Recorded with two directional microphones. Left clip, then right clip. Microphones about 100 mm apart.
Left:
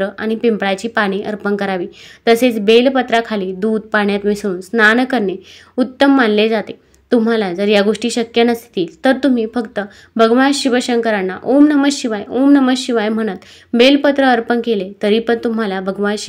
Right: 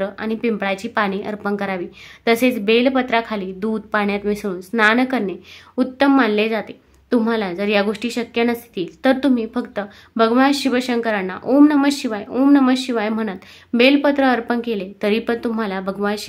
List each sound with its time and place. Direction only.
0.0 s a woman's voice: 30° left (ahead or behind)
12.3 s speech: 20° left (ahead or behind)
12.6 s a woman's voice: 30° left (ahead or behind)